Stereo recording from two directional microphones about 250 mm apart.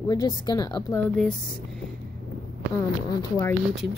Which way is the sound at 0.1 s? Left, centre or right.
Centre.